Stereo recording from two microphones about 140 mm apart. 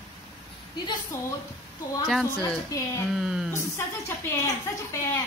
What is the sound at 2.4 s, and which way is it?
Speech, 25° left (ahead or behind).